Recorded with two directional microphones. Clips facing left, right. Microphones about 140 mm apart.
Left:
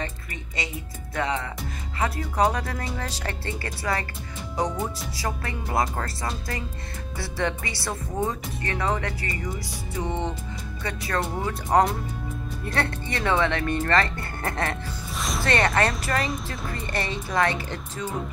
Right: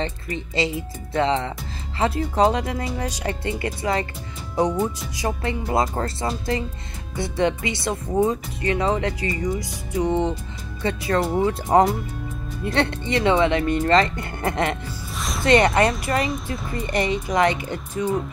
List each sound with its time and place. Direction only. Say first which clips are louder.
0.0 s speech: right 7 dB; 30° right (ahead or behind)
15.1 s music: even; centre (ahead or behind)
15.4 s speech: right 6 dB; 20° right (ahead or behind)